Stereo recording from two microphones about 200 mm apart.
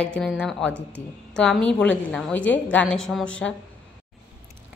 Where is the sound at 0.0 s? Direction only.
5° left (ahead or behind).